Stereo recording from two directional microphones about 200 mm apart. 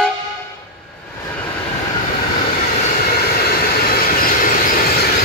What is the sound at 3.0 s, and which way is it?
Train, 50° left (ahead or behind).